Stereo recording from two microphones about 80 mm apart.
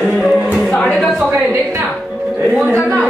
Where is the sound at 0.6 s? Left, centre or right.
Centre.